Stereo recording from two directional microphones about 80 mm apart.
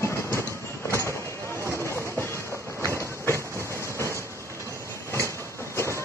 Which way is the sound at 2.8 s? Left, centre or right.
Right.